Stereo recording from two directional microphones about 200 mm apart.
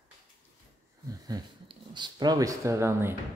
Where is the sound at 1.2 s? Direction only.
20° right (ahead or behind).